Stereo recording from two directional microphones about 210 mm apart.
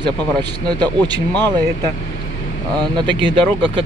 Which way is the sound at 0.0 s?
20° right (ahead or behind).